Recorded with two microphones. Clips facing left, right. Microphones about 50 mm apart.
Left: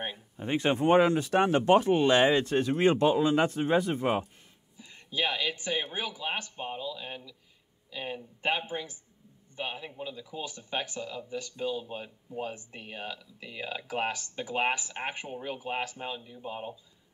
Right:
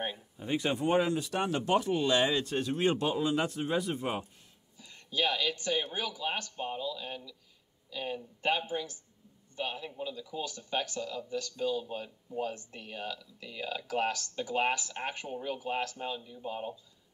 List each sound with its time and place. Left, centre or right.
0.4 s speech: left
4.7 s speech: centre